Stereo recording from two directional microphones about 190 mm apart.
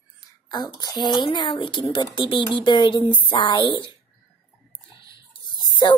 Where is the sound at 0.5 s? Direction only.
20° left (ahead or behind).